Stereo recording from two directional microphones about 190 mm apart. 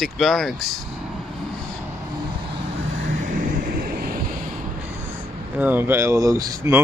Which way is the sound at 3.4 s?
50° right (ahead or behind).